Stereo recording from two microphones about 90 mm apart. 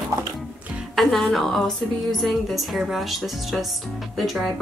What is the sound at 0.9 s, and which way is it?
A woman's voice, centre (ahead or behind).